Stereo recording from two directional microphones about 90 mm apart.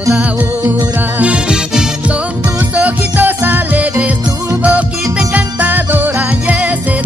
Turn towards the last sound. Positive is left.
turn(degrees=-15)  # may be behind; listen again after turning